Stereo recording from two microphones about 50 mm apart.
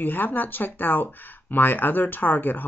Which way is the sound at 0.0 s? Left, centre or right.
Left.